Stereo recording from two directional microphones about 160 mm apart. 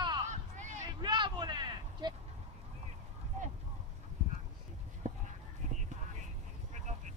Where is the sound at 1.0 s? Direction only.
30° right (ahead or behind).